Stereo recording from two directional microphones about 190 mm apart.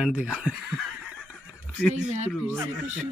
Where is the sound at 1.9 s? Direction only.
40° right (ahead or behind).